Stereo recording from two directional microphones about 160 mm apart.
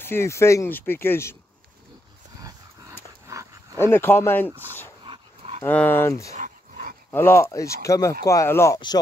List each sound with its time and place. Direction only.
0.0 s speech: 15° left (ahead or behind)
2.4 s dog: 20° right (ahead or behind)
3.8 s speech: 15° left (ahead or behind)
5.0 s dog: 35° right (ahead or behind)
5.6 s speech: 10° left (ahead or behind)
6.3 s dog: 55° right (ahead or behind)
7.1 s speech: 15° left (ahead or behind)